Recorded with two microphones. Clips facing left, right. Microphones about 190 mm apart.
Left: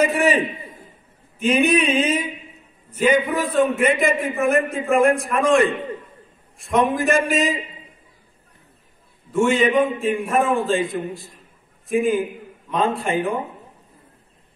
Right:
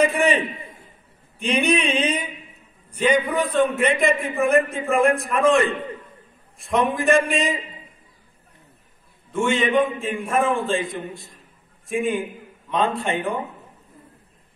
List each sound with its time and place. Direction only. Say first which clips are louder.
0.0 s a man's voice: left 1 dB; centre (ahead or behind)
1.4 s a man's voice: left 3 dB; centre (ahead or behind)
3.0 s a man's voice: left 1 dB; 5° left (ahead or behind)
9.3 s a man's voice: left 3 dB; centre (ahead or behind)